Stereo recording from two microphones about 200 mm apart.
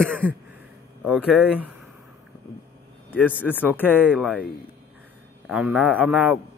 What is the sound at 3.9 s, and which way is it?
Mantra, 5° right (ahead or behind).